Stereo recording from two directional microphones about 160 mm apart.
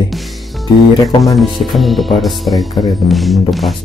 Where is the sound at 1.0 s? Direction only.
Centre (ahead or behind).